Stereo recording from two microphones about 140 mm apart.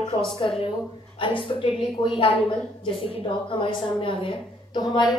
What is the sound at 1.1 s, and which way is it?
A woman's voice, 40° left (ahead or behind).